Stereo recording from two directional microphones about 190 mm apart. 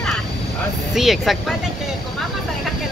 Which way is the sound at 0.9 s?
Centre (ahead or behind).